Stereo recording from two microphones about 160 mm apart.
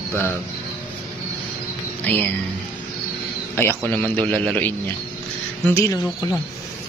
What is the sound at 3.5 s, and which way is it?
A man's voice, 15° left (ahead or behind).